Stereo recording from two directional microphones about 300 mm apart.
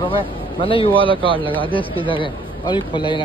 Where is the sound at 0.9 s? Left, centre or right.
Centre.